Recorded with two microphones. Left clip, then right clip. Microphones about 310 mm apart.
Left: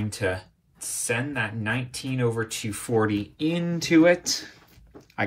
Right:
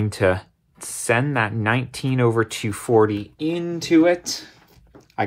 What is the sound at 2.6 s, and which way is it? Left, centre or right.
Speech, centre.